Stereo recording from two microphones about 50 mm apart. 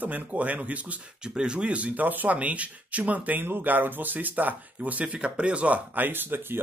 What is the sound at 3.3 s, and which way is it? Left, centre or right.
Speech, right.